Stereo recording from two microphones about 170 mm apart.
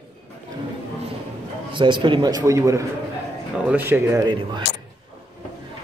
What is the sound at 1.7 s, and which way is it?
Speech, 30° right (ahead or behind).